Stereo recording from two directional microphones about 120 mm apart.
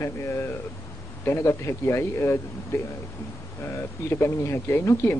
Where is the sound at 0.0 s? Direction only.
20° left (ahead or behind).